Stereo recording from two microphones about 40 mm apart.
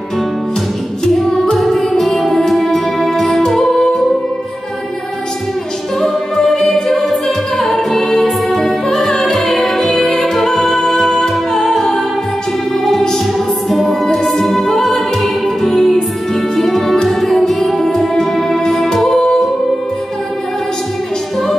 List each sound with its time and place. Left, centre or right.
1.0 s music: centre
5.9 s music: centre
13.7 s music: centre
19.1 s music: centre